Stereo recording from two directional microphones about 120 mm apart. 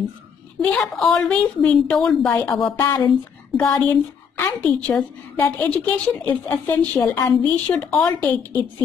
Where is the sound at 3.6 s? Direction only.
20° left (ahead or behind).